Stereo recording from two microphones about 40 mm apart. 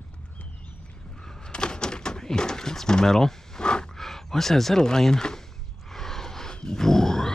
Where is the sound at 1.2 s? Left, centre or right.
Centre.